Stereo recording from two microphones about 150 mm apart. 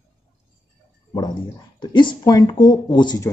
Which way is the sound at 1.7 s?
30° left (ahead or behind).